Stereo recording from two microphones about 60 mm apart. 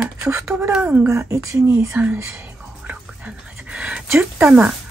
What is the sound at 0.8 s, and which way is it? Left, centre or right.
Speech, right.